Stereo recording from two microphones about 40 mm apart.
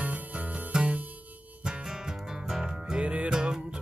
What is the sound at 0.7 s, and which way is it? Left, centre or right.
Music, right.